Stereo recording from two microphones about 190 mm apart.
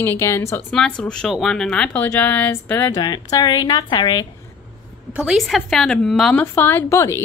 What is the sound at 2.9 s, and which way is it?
Speech, 20° left (ahead or behind).